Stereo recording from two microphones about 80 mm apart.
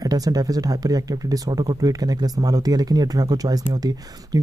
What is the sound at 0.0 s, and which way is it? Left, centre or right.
Speech, right.